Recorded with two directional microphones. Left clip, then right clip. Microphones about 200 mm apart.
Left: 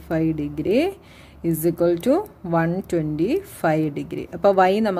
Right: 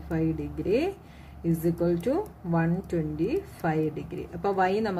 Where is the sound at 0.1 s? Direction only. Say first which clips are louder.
Left 7 dB; 50° left (ahead or behind).